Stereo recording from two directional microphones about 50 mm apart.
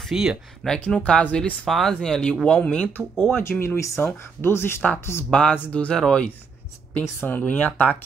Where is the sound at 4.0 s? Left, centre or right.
Left.